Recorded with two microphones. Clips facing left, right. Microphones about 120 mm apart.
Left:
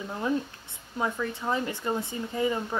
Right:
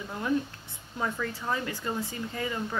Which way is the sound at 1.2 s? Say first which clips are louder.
Left 3 dB; 20° left (ahead or behind).